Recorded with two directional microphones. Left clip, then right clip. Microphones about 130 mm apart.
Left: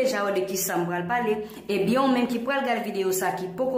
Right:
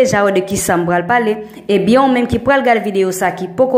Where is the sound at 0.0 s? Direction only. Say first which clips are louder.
Right 12 dB; 40° right (ahead or behind).